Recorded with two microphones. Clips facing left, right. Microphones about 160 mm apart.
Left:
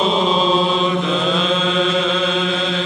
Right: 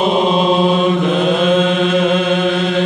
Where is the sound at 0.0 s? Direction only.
55° right (ahead or behind).